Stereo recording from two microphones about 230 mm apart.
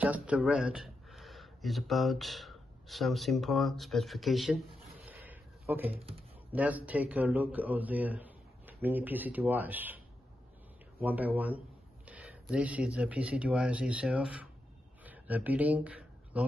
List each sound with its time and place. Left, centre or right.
0.0 s speech: centre
5.9 s speech: right
6.5 s a man's voice: centre
15.0 s a sound: centre